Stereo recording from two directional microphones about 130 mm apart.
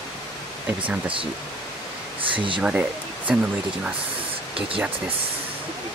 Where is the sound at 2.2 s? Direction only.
40° right (ahead or behind).